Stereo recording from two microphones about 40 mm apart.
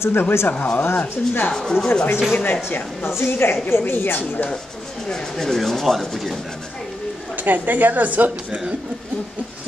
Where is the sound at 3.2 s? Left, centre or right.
Left.